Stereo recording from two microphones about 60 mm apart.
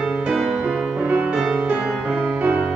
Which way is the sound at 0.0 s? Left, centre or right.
Centre.